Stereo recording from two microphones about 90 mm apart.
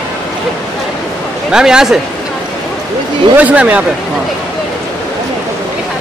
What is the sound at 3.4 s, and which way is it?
Speech, 15° right (ahead or behind).